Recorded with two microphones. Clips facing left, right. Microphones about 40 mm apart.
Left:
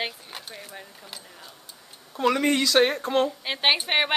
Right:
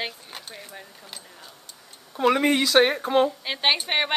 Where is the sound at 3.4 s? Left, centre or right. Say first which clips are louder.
Even; centre.